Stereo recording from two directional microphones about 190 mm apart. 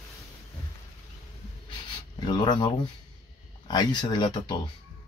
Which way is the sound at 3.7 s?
20° left (ahead or behind).